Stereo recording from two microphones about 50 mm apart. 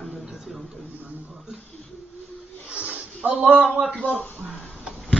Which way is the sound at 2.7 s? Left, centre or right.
Right.